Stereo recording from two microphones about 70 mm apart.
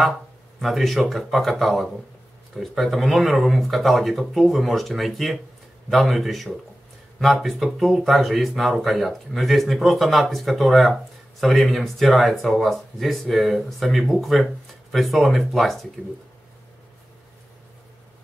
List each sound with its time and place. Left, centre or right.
0.6 s speech: centre